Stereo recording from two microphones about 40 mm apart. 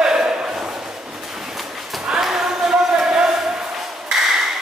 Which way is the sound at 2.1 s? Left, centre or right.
Centre.